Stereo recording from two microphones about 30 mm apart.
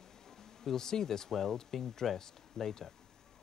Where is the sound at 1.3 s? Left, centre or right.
Centre.